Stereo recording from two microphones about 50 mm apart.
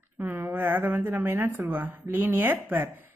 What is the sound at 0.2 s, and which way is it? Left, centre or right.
A woman's voice, right.